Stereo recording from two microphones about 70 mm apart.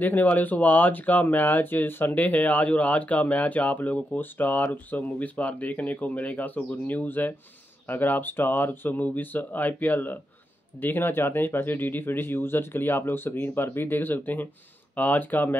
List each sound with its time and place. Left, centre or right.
0.0 s speech: left